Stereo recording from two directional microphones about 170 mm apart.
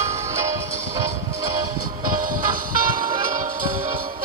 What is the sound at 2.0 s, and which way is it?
Music, 55° right (ahead or behind).